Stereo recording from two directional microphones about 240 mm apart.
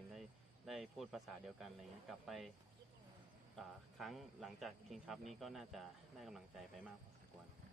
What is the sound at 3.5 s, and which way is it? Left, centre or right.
Speech, centre.